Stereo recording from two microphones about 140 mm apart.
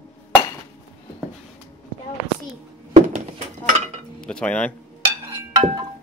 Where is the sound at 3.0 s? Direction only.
50° right (ahead or behind).